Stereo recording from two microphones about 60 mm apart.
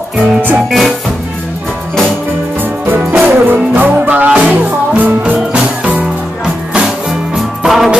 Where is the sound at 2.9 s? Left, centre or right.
Right.